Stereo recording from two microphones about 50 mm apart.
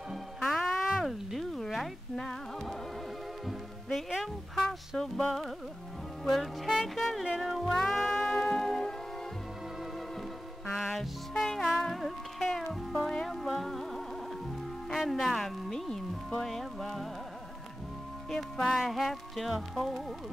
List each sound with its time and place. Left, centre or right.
0.6 s music: centre
1.3 s a sound: centre
2.1 s music: centre
3.4 s music: centre
11.0 s music: centre
18.3 s music: centre